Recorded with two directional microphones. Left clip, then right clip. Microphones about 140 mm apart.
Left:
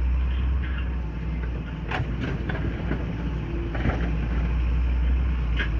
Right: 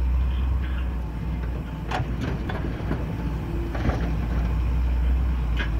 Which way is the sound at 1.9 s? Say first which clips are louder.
Right 1 dB; 15° right (ahead or behind).